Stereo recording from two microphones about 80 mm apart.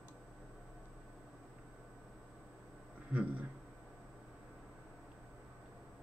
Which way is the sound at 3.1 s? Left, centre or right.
Centre.